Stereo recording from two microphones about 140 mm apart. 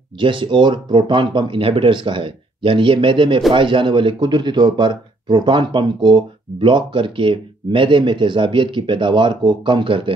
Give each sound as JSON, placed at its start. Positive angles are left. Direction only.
{"t": 0.2, "sound": "speech", "side_deg": -35}